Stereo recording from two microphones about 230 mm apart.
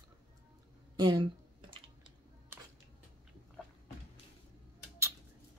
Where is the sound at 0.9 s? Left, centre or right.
Centre.